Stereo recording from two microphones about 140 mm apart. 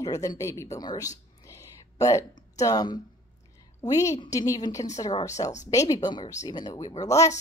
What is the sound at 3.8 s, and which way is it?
A woman's voice, 25° left (ahead or behind).